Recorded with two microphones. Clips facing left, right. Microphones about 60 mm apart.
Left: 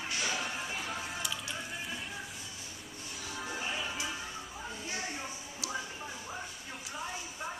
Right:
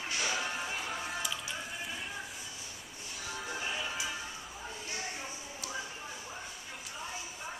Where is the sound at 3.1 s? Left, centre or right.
Centre.